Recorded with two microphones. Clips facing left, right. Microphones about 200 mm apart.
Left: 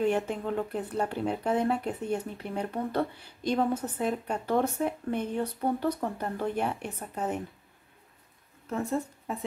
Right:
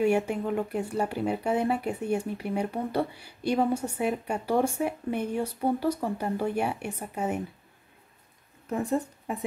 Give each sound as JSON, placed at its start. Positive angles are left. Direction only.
{"t": 0.0, "sound": "speech", "side_deg": -10}
{"t": 8.6, "sound": "a woman's voice", "side_deg": -15}